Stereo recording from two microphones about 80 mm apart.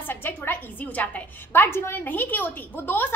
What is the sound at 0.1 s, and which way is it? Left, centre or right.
A woman's voice, left.